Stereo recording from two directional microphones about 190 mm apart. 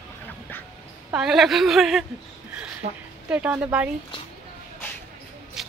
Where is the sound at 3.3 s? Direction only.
5° right (ahead or behind).